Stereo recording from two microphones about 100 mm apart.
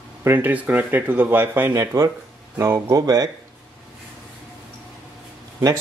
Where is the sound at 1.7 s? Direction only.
35° right (ahead or behind).